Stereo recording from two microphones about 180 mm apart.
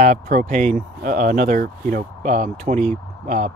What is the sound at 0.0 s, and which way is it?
Speech, 45° right (ahead or behind).